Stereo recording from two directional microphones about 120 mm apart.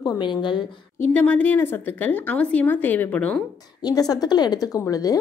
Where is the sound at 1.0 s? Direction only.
15° left (ahead or behind).